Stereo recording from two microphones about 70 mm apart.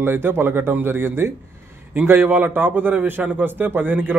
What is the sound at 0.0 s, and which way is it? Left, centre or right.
A man's voice, right.